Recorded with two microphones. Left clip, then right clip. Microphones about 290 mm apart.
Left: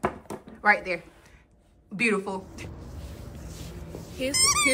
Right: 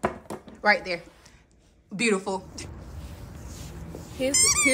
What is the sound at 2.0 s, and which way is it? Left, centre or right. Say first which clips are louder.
Speech: even; centre.